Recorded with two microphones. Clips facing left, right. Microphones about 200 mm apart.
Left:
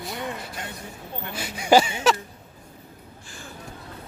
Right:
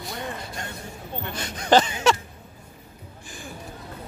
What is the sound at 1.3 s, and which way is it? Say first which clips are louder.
Speech: left 1 dB; 10° left (ahead or behind).